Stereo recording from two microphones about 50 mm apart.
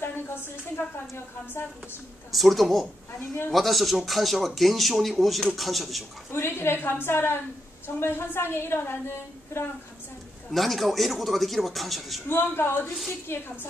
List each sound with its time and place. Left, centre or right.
0.0 s a woman's voice: left
2.3 s a man's voice: centre
6.3 s a woman's voice: left
10.5 s a man's voice: centre
12.3 s a woman's voice: left